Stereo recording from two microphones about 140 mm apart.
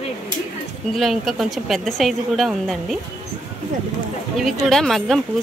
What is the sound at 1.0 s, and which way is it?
A woman's voice, centre (ahead or behind).